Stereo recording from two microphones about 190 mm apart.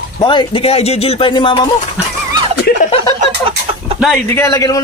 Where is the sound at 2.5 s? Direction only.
55° left (ahead or behind).